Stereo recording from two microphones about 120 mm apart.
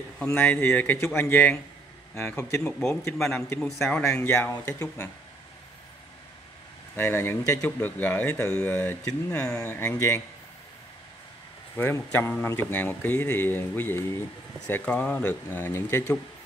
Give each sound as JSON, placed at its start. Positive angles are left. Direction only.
{"t": 0.2, "sound": "a man's voice", "side_deg": 15}
{"t": 2.6, "sound": "a man's voice", "side_deg": 5}
{"t": 4.0, "sound": "speech", "side_deg": 20}
{"t": 7.0, "sound": "a man's voice", "side_deg": 15}
{"t": 9.6, "sound": "speech", "side_deg": 20}
{"t": 11.7, "sound": "a man's voice", "side_deg": 15}